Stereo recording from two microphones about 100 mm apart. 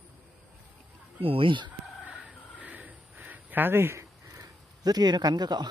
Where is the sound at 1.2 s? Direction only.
65° right (ahead or behind).